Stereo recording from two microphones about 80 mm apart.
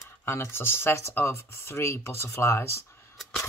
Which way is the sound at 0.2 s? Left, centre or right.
Left.